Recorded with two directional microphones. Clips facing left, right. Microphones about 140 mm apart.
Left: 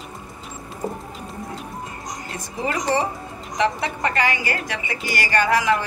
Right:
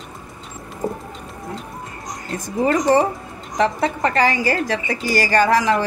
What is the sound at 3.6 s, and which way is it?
A woman's voice, 40° right (ahead or behind).